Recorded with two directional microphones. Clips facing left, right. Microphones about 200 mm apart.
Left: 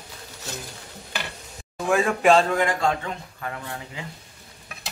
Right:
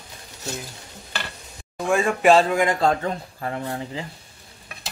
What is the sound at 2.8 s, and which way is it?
Speech, 40° right (ahead or behind).